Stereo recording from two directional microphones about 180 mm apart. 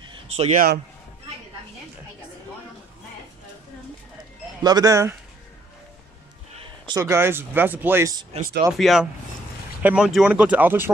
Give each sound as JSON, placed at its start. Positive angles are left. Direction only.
{"t": 0.4, "sound": "speech", "side_deg": -40}
{"t": 4.6, "sound": "speech", "side_deg": -20}
{"t": 6.9, "sound": "speech", "side_deg": -15}
{"t": 8.7, "sound": "speech", "side_deg": 0}